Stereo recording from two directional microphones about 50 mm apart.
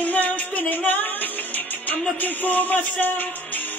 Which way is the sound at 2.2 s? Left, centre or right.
Left.